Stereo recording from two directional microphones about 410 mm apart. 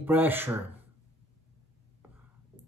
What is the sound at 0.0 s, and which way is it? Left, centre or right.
Speech, centre.